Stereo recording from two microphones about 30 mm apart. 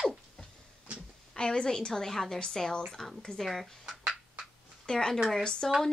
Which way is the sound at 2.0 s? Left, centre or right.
Centre.